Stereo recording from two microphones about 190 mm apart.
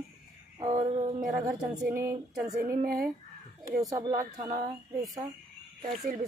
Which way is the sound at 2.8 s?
50° right (ahead or behind).